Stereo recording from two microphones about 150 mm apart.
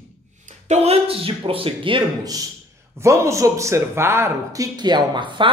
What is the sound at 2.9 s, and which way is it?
Speech, 20° right (ahead or behind).